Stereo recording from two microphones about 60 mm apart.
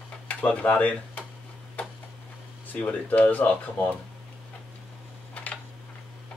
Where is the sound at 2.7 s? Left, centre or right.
Left.